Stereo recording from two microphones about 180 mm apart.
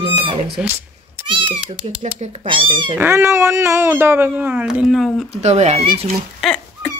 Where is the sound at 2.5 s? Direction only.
30° right (ahead or behind).